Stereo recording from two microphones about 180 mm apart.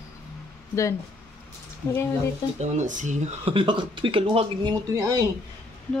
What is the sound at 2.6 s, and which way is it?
Speech, 40° right (ahead or behind).